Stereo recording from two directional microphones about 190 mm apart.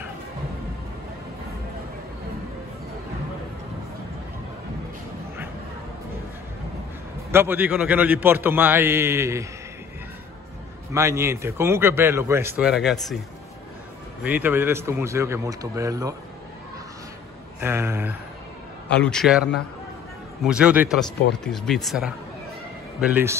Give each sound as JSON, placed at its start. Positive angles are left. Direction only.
{"t": 7.2, "sound": "a man's voice", "side_deg": -10}
{"t": 10.9, "sound": "a man's voice", "side_deg": -15}
{"t": 14.2, "sound": "a man's voice", "side_deg": -10}
{"t": 17.6, "sound": "a man's voice", "side_deg": -15}
{"t": 18.9, "sound": "a man's voice", "side_deg": 5}